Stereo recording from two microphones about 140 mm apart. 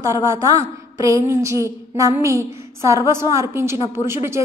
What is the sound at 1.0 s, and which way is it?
A woman's voice, 20° right (ahead or behind).